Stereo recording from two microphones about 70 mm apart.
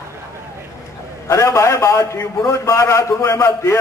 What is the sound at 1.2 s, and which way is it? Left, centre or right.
A man's voice, left.